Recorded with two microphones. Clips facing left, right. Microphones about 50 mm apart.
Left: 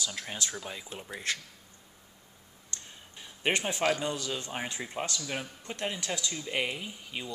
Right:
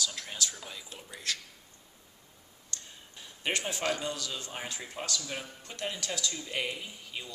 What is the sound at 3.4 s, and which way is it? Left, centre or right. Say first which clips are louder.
Speech: left 4 dB; left.